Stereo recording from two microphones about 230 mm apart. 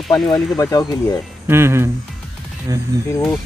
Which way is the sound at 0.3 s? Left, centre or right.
Centre.